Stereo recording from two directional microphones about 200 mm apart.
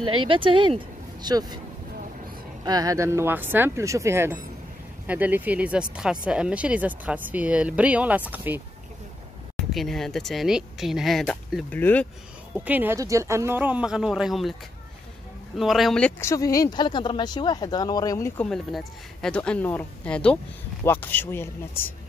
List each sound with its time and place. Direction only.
0.3 s speech: 25° right (ahead or behind)
2.6 s speech: 20° right (ahead or behind)
9.7 s speech: centre (ahead or behind)
12.5 s speech: 10° right (ahead or behind)
15.5 s speech: centre (ahead or behind); by 18.3 s 15° left (ahead or behind)
18.4 s speech: centre (ahead or behind)